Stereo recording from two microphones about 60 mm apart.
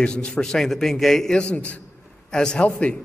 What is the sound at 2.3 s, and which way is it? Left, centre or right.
Speech, centre.